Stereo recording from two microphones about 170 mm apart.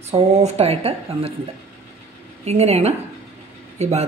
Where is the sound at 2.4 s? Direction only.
40° right (ahead or behind).